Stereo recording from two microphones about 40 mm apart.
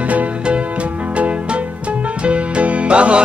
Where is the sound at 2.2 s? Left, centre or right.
Right.